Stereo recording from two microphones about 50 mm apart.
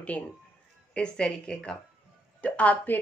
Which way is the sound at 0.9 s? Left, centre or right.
Centre.